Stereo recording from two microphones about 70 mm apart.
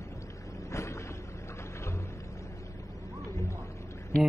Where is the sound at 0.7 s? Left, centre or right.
Left.